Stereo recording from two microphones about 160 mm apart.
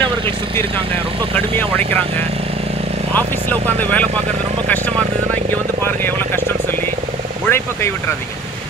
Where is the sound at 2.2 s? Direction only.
40° right (ahead or behind).